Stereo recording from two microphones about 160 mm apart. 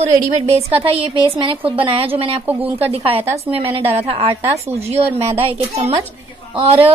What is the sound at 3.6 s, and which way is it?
A woman's voice, 40° right (ahead or behind).